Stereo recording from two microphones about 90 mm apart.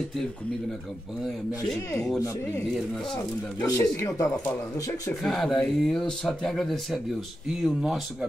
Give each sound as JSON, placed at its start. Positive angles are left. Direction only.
{"t": 3.6, "sound": "speech", "side_deg": 35}
{"t": 5.2, "sound": "speech", "side_deg": 5}